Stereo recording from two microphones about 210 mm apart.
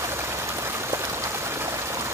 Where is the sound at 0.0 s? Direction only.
10° right (ahead or behind).